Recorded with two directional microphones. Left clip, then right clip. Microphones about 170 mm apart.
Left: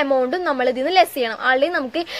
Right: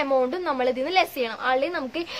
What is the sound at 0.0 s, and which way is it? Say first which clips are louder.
A woman's voice: left 4 dB; 30° left (ahead or behind).